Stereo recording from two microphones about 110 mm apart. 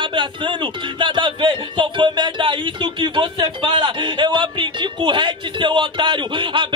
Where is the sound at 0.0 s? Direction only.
50° right (ahead or behind).